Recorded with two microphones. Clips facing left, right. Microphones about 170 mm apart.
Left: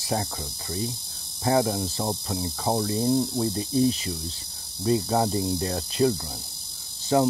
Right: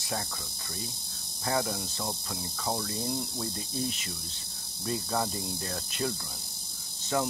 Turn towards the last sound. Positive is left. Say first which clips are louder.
# left 8 dB
turn(degrees=25)  # may be behind; listen again after turning